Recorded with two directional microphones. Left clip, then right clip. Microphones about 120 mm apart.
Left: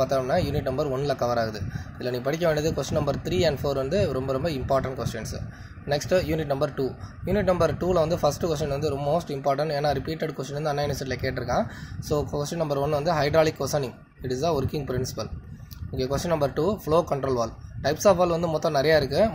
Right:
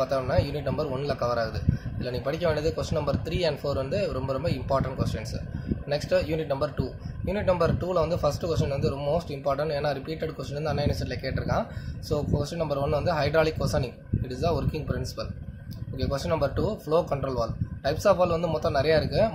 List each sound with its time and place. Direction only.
0.0 s speech: 35° left (ahead or behind)